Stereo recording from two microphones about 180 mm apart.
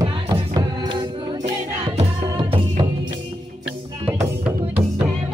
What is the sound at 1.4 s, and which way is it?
Music, 40° right (ahead or behind).